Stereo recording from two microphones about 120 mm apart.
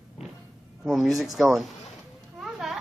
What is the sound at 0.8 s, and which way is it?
Speech, centre (ahead or behind).